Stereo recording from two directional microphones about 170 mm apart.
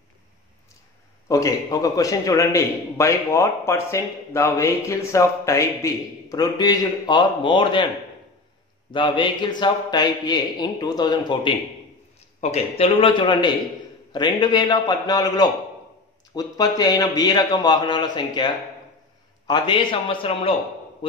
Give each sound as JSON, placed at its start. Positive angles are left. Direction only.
{"t": 1.3, "sound": "a man's voice", "side_deg": 20}
{"t": 8.9, "sound": "a man's voice", "side_deg": 30}
{"t": 12.4, "sound": "a man's voice", "side_deg": 40}